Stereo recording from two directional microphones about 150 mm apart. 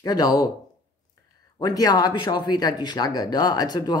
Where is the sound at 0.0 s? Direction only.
25° left (ahead or behind).